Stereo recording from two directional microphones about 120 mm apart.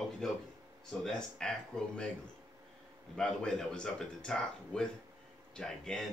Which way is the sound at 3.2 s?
5° left (ahead or behind).